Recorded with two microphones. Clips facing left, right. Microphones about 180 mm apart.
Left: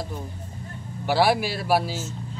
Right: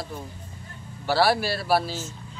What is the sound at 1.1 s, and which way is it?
Speech, 15° left (ahead or behind).